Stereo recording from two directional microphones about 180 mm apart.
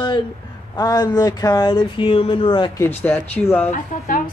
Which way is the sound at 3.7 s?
50° left (ahead or behind).